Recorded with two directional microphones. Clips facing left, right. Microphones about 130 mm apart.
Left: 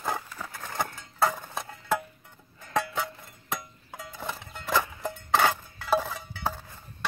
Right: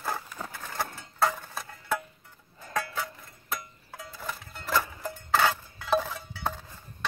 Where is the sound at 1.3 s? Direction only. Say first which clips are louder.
Left 3 dB; 20° left (ahead or behind).